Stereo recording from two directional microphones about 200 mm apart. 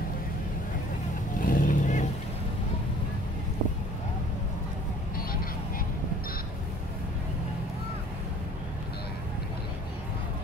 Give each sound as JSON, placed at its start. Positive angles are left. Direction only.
{"t": 1.4, "sound": "vehicle", "side_deg": 40}